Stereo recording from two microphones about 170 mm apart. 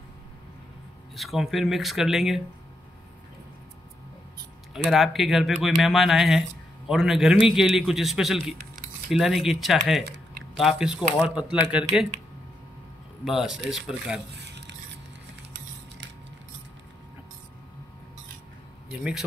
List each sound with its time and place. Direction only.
1.1 s speech: centre (ahead or behind)
4.7 s speech: centre (ahead or behind)
13.2 s speech: centre (ahead or behind)
14.3 s squish: 85° right
18.9 s speech: 5° right (ahead or behind)